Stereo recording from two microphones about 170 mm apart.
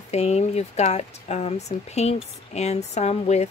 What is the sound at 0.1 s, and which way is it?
Speech, 40° left (ahead or behind).